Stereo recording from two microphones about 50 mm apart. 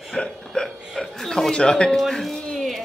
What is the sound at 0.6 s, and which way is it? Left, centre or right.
Chuckle, centre.